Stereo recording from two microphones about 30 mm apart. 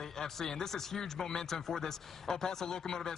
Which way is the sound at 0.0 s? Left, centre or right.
Centre.